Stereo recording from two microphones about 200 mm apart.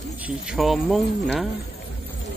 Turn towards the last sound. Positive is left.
turn(degrees=0)  # may be behind; listen again after turning